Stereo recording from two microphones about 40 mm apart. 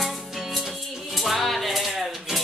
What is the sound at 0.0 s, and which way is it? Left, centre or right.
Music, centre.